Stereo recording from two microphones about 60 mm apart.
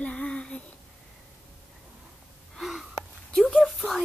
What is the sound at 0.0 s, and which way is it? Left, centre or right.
Child singing, centre.